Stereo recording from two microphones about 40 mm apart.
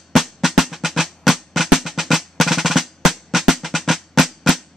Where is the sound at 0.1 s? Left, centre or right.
Centre.